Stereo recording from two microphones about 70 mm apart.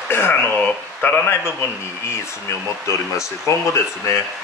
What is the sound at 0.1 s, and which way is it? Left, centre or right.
Speech, left.